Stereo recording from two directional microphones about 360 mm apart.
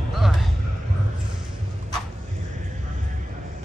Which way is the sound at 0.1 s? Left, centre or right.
Centre.